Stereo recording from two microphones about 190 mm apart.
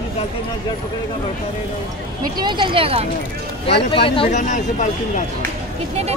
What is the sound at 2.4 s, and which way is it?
Speech, 25° right (ahead or behind).